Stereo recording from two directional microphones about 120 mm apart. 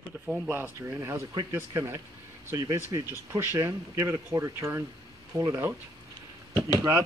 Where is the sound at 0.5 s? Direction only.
20° right (ahead or behind).